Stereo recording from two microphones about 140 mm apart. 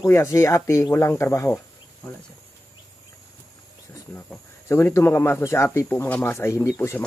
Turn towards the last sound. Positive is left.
turn(degrees=15)  # may be behind; listen again after turning